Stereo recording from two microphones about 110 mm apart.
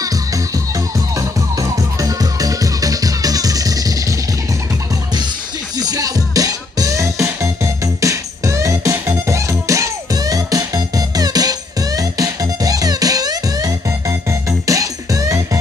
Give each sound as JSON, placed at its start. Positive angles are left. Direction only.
{"t": 0.7, "sound": "music", "side_deg": -30}
{"t": 5.8, "sound": "music", "side_deg": -35}